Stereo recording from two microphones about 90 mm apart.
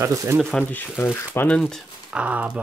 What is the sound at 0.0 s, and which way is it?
Speech, 35° right (ahead or behind).